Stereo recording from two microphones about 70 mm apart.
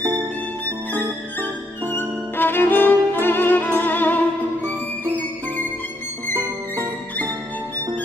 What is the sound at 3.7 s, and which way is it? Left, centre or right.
Music, left.